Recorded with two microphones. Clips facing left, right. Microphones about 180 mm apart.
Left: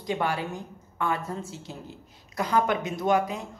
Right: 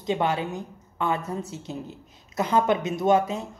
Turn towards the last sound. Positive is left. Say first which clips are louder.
# right 3 dB
turn(degrees=-20)  # may be behind; listen again after turning